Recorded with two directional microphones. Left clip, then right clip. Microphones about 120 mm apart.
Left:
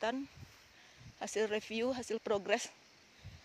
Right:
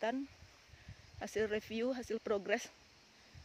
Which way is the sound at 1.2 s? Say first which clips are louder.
Left 2 dB; 20° right (ahead or behind).